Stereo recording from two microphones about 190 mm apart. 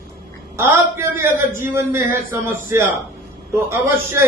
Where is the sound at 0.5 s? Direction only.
10° right (ahead or behind).